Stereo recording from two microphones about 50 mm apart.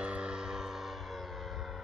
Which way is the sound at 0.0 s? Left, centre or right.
Right.